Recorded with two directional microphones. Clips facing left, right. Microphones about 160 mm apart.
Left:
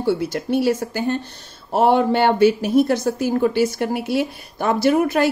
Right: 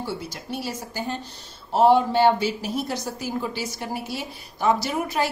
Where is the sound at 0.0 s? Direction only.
60° left (ahead or behind).